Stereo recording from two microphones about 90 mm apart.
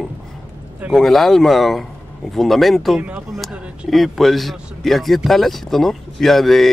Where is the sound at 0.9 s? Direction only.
Centre (ahead or behind).